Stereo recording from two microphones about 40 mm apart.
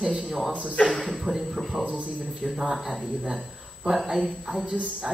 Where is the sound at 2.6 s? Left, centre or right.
Centre.